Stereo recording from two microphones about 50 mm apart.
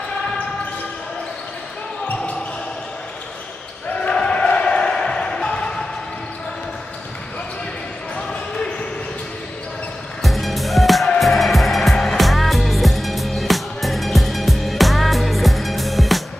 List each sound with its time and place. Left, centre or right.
4.1 s music: centre
8.2 s basketball bounce: centre
10.2 s music: centre